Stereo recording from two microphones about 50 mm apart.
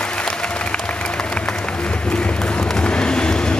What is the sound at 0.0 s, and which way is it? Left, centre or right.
Applause, left.